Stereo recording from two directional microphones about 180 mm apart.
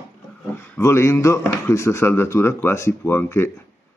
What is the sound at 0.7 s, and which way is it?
Speech, 15° left (ahead or behind).